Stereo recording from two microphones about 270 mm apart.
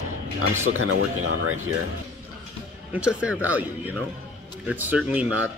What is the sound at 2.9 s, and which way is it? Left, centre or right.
Speech, centre.